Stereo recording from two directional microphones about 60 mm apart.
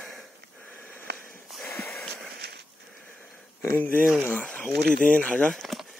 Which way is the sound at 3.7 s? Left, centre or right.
Left.